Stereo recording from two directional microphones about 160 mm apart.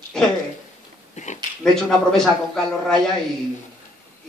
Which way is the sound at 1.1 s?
50° left (ahead or behind).